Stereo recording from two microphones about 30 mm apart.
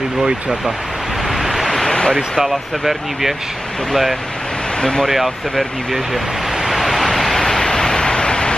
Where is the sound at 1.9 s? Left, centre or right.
Left.